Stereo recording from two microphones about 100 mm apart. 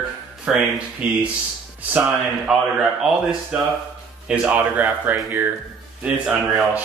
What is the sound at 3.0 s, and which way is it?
A man's voice, 5° right (ahead or behind).